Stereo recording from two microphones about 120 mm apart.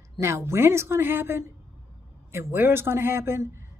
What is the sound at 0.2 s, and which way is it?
A woman's voice, 25° right (ahead or behind).